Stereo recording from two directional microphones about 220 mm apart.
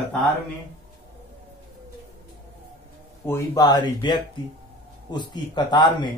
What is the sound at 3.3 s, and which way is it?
Speech, 15° left (ahead or behind).